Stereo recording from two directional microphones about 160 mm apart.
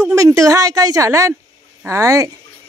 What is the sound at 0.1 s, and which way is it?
A woman's voice, 20° right (ahead or behind).